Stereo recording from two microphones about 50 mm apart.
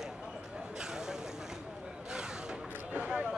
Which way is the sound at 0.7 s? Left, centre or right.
Centre.